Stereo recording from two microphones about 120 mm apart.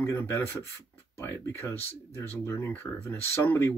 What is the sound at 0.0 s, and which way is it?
Speech, 25° left (ahead or behind).